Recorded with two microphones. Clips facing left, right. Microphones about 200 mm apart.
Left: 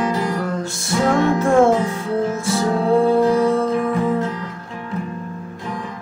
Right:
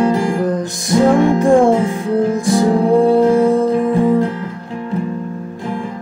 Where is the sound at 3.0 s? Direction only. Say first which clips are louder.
Right 4 dB; 30° right (ahead or behind).